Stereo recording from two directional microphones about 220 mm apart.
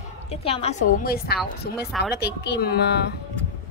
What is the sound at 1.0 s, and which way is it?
A woman's voice, 45° left (ahead or behind).